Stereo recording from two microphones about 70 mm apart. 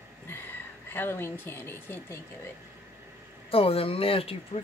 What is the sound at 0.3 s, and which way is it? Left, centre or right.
Speech, left.